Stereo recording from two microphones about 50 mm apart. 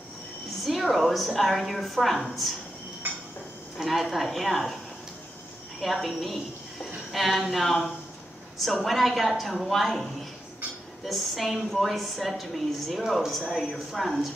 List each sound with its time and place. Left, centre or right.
0.7 s a woman's voice: centre
3.0 s dishes: right
3.7 s a woman's voice: centre
5.8 s a woman's voice: centre
11.1 s a woman's voice: centre